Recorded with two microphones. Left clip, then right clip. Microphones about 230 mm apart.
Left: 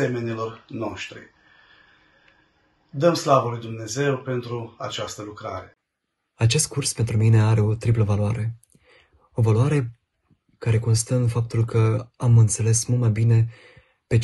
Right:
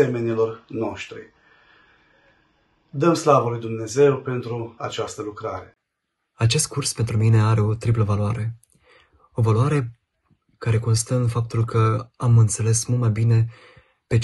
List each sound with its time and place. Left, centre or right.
0.0 s speech: centre
3.3 s speech: centre
6.4 s speech: centre
13.6 s a sound: left